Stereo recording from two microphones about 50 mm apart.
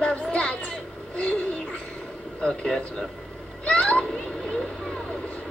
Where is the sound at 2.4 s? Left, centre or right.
Centre.